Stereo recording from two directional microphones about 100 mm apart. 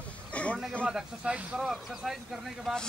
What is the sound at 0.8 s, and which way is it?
Speech, 10° right (ahead or behind).